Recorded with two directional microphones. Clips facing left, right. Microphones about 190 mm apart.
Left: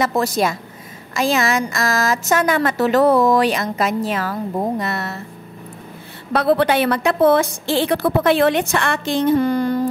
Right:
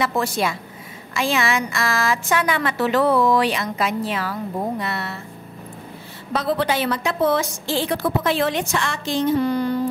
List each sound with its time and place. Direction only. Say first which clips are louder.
0.0 s a woman's voice: left 3 dB; 40° left (ahead or behind)
6.3 s a woman's voice: left 5 dB; 60° left (ahead or behind)